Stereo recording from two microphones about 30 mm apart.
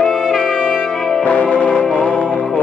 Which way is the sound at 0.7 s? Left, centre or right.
Left.